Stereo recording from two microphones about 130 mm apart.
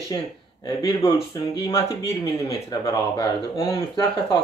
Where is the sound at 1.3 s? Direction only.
30° left (ahead or behind).